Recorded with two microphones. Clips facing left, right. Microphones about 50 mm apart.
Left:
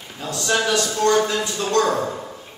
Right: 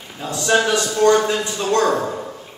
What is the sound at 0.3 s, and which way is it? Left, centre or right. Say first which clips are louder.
A man's voice: right 3 dB; centre.